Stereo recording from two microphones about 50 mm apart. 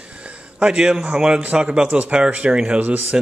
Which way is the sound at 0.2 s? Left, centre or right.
Centre.